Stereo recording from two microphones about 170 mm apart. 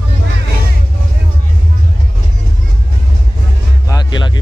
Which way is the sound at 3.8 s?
25° left (ahead or behind).